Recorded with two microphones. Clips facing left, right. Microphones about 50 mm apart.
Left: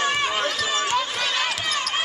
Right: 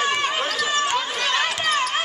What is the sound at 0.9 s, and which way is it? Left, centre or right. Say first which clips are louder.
Basketball bounce: right 1 dB; centre.